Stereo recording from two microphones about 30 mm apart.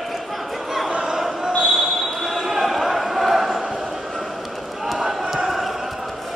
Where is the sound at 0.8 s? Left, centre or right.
Right.